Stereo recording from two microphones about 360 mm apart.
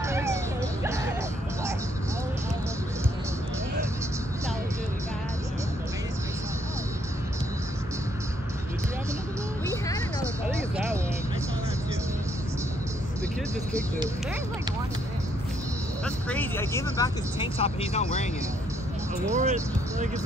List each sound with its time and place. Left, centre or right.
0.0 s cat: centre
0.8 s music: centre
16.3 s speech: centre
19.3 s speech: centre